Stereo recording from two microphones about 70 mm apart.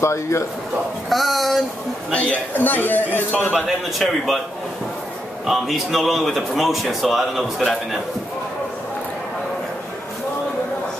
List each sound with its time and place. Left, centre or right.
0.0 s speech: left
1.1 s speech: centre
2.5 s a man's voice: left
3.6 s a man's voice: centre
5.5 s a man's voice: centre